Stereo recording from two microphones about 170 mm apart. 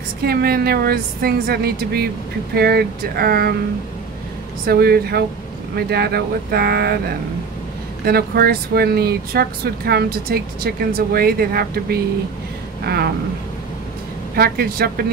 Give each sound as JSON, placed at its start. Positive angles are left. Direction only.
{"t": 0.2, "sound": "speech", "side_deg": -65}
{"t": 4.6, "sound": "speech", "side_deg": -65}
{"t": 8.0, "sound": "speech", "side_deg": -65}
{"t": 14.3, "sound": "speech", "side_deg": -65}